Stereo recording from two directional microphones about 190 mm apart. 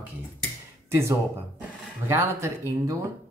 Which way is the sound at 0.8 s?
15° right (ahead or behind).